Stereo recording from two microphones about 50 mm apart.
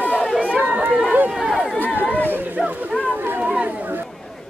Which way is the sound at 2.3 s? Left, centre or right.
Right.